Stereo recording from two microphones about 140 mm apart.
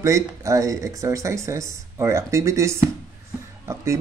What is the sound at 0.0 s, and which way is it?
Speech, 20° right (ahead or behind).